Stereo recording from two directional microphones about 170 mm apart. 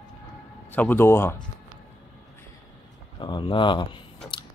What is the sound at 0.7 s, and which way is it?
Speech, 10° left (ahead or behind).